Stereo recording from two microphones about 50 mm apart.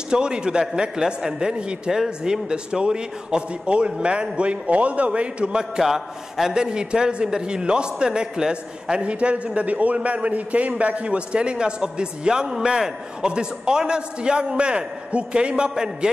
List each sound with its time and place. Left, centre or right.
0.1 s a man's voice: centre
5.8 s a man's voice: centre